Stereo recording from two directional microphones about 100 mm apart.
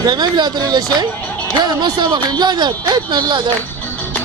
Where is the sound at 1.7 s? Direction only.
45° right (ahead or behind).